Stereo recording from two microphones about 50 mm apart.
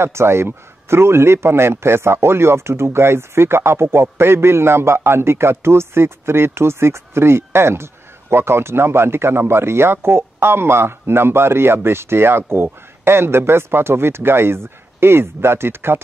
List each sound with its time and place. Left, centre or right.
0.0 s a man's voice: right